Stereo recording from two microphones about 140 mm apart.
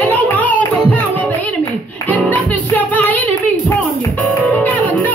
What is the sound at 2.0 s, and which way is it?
Music, 10° left (ahead or behind).